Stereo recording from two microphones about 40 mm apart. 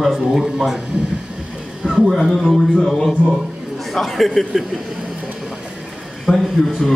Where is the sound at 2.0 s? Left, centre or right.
Centre.